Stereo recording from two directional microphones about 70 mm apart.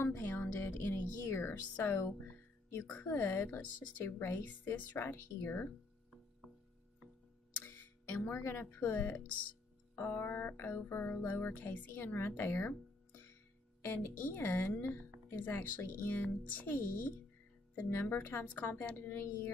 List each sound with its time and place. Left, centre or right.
0.0 s music: left
0.7 s speech: left
2.9 s music: left
4.9 s speech: left
8.4 s music: left
17.7 s speech: left